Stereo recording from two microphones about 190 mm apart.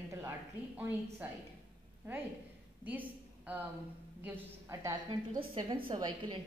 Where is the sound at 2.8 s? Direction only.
10° right (ahead or behind).